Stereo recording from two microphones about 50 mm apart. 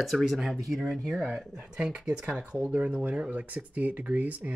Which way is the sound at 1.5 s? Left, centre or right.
Centre.